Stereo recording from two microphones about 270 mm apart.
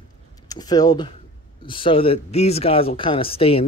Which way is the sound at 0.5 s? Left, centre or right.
Centre.